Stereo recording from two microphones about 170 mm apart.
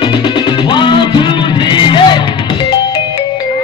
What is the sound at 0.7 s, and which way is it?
Music, 30° left (ahead or behind).